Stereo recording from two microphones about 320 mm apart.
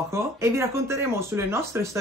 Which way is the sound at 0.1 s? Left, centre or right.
Centre.